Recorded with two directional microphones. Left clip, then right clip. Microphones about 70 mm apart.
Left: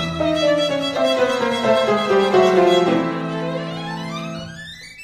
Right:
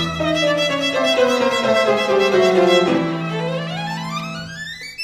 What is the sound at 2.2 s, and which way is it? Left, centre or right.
Music, left.